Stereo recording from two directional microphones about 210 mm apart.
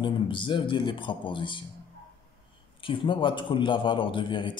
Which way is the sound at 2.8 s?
25° left (ahead or behind).